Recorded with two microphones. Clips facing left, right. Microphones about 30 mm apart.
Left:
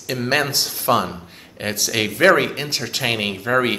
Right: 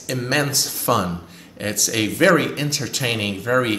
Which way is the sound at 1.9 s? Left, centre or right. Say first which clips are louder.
Left 1 dB; centre.